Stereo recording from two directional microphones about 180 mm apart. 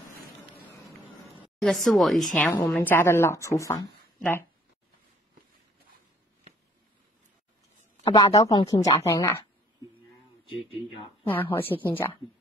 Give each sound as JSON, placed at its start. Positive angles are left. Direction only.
{"t": 1.6, "sound": "a woman's voice", "side_deg": 0}
{"t": 8.0, "sound": "speech", "side_deg": 20}
{"t": 10.7, "sound": "speech", "side_deg": 30}
{"t": 11.3, "sound": "a woman's voice", "side_deg": 10}